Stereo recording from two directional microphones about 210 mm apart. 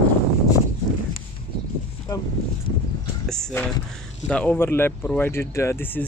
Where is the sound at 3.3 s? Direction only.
5° left (ahead or behind).